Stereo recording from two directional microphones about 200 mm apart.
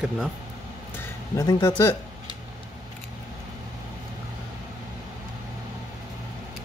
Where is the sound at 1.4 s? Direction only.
20° left (ahead or behind).